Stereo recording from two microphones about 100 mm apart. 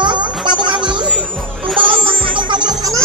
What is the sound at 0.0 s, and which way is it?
Music, 50° right (ahead or behind).